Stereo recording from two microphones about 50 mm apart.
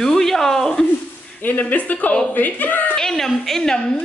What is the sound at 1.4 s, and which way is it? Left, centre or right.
Speech, left.